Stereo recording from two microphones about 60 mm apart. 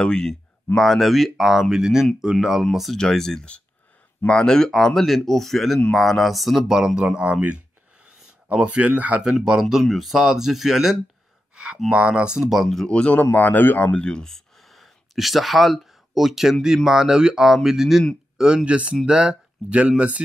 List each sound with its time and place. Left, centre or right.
0.0 s speech: centre
0.7 s speech: centre
7.2 s a sound: centre
9.2 s speech: centre
12.8 s speech: centre; by 13.9 s left
13.9 s speech: centre
14.3 s a sound: centre
16.6 s speech: centre